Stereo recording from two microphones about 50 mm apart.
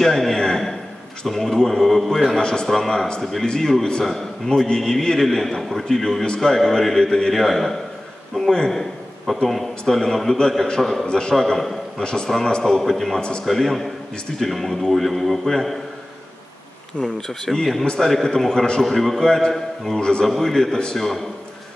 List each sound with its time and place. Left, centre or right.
0.0 s a sound: centre
1.2 s a man's voice: centre
8.4 s a sound: centre
9.5 s a man's voice: centre
11.1 s a man's voice: centre
11.3 s a man's voice: centre
17.0 s a man's voice: centre